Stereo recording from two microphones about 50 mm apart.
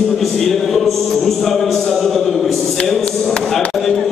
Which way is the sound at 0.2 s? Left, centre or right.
Centre.